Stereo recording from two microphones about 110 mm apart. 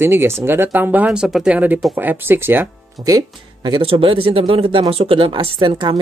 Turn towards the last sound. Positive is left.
turn(degrees=-45)  # may be behind; listen again after turning